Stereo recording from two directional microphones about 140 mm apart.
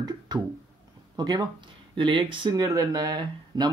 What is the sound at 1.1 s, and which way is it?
Speech, 30° right (ahead or behind).